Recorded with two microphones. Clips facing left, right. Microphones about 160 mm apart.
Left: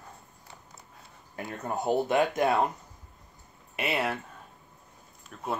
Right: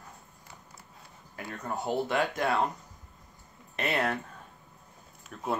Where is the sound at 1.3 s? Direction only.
20° left (ahead or behind).